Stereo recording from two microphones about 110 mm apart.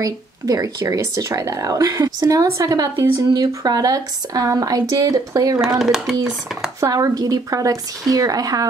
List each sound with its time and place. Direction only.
0.0 s speech: 35° right (ahead or behind)
5.6 s speech: 5° right (ahead or behind)
6.8 s speech: 30° right (ahead or behind)